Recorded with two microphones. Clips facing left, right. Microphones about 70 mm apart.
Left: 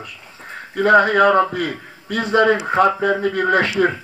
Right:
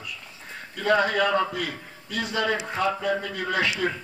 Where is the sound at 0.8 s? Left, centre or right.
Left.